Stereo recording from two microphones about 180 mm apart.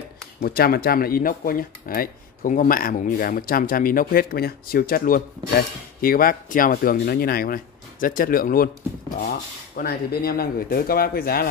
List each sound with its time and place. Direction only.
0.4 s speech: 55° left (ahead or behind)
9.8 s speech: 60° left (ahead or behind)